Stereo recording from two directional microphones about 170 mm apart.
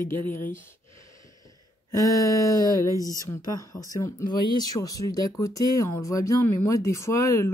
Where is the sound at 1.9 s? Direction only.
20° left (ahead or behind).